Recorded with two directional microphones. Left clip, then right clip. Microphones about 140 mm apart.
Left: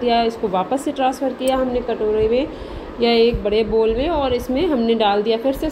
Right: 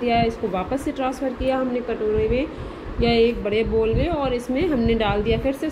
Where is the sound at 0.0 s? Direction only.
25° left (ahead or behind).